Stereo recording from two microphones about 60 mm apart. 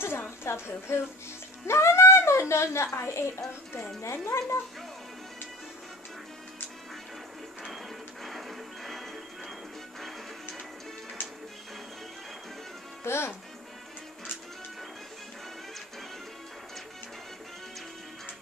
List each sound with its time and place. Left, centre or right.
0.4 s a woman's voice: left
7.6 s music: centre
13.0 s speech: left